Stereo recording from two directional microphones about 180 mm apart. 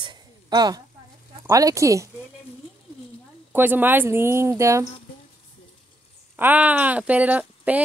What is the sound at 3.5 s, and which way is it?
Speech, 10° right (ahead or behind).